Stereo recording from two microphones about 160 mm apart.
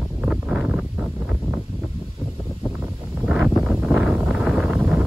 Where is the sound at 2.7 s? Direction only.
5° right (ahead or behind).